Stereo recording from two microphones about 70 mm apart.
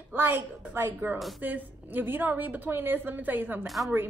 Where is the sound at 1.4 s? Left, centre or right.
Right.